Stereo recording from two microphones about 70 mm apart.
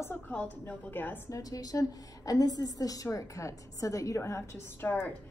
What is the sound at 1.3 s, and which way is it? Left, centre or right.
A woman's voice, left.